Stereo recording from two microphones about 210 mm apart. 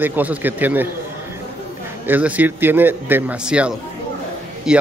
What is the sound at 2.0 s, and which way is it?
A man's voice, 10° right (ahead or behind).